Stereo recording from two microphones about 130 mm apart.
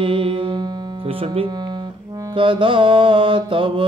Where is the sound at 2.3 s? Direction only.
40° right (ahead or behind).